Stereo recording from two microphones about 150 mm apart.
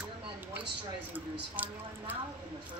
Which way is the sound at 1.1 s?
10° right (ahead or behind).